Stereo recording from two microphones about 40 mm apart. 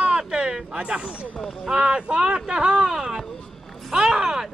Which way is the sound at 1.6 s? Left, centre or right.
Right.